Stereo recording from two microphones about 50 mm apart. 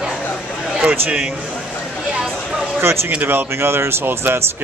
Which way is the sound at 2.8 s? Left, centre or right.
Right.